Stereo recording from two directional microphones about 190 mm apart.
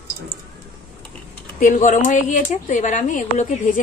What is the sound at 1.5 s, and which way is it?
A woman's voice, 45° left (ahead or behind).